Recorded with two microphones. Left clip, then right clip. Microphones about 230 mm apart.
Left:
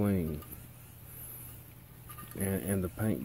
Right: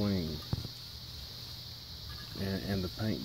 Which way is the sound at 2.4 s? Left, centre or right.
Left.